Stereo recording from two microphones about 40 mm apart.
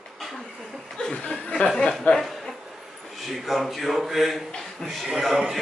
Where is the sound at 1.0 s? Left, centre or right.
Left.